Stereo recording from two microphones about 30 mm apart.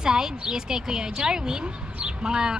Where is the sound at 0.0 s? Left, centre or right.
Right.